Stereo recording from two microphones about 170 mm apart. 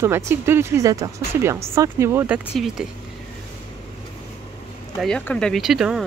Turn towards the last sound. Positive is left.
turn(degrees=0)  # may be behind; listen again after turning